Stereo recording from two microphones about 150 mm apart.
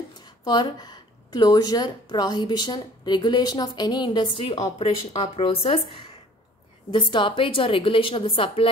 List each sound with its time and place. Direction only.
0.4 s a woman's voice: 25° left (ahead or behind)